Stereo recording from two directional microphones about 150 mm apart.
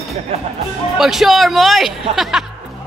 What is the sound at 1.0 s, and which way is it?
Music, centre (ahead or behind).